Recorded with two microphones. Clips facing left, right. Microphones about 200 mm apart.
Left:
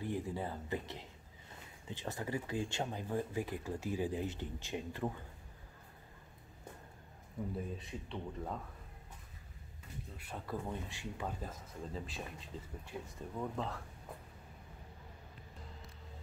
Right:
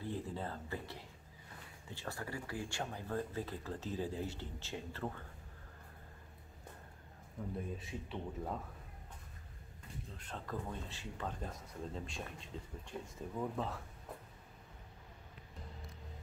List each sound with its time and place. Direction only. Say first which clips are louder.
0.0 s speech: left 3 dB; 15° left (ahead or behind)
7.5 s speech: left 1 dB; centre (ahead or behind)
10.1 s speech: left 2 dB; 10° left (ahead or behind)